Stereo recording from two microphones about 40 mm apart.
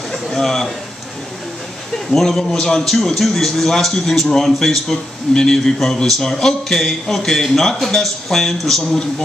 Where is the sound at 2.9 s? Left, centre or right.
Centre.